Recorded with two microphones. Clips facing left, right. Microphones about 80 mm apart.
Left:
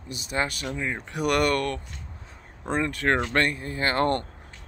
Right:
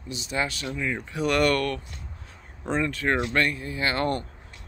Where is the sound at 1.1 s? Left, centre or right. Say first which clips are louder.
Left 1 dB; left.